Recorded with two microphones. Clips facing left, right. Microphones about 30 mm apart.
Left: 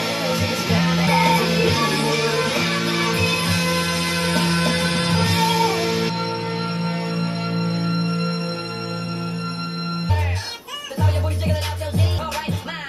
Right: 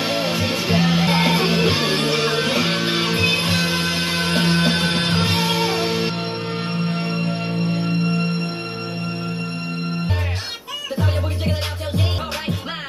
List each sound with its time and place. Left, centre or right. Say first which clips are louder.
0.0 s music: right 1 dB; right
6.7 s music: right 1 dB; right
7.2 s music: right 1 dB; right
11.0 s music: left 2 dB; right